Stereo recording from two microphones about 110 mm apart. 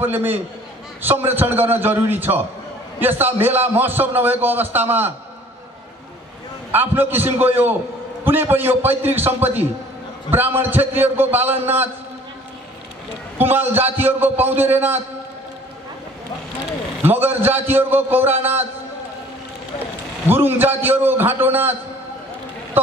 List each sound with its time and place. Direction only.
0.0 s a man's voice: 20° right (ahead or behind)
6.7 s a man's voice: 20° right (ahead or behind)
13.4 s a man's voice: 20° right (ahead or behind)
17.0 s a man's voice: 20° right (ahead or behind)
20.2 s a man's voice: 20° right (ahead or behind)